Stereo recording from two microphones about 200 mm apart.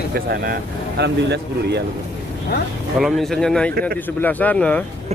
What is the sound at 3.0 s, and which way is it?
Speech, centre (ahead or behind).